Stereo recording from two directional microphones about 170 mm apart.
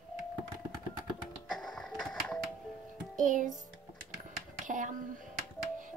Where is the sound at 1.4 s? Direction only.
Centre (ahead or behind).